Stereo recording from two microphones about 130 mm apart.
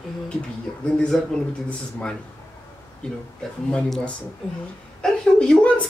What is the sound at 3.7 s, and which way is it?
A woman's voice, 5° left (ahead or behind).